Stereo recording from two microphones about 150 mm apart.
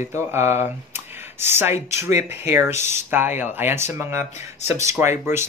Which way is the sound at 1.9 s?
20° right (ahead or behind).